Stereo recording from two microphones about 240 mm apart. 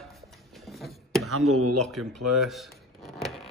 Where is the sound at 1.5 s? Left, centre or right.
Right.